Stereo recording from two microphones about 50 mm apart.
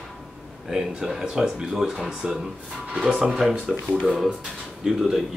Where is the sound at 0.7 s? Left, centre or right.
Centre.